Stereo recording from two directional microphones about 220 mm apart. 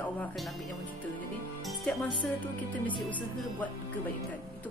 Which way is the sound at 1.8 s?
5° left (ahead or behind).